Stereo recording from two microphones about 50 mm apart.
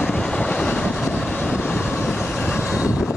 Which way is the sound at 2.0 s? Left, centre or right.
Centre.